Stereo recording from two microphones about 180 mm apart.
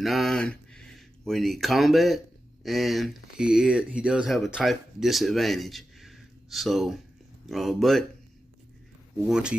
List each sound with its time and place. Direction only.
0.0 s speech: centre (ahead or behind)
9.2 s speech: 5° right (ahead or behind)